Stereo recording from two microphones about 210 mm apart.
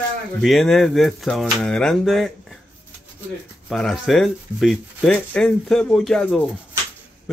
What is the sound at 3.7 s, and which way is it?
Speech, centre (ahead or behind).